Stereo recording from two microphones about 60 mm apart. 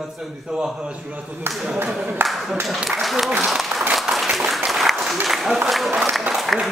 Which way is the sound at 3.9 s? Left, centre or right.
Centre.